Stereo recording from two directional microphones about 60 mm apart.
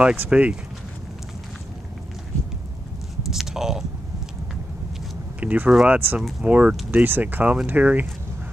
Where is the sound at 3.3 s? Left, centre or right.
Centre.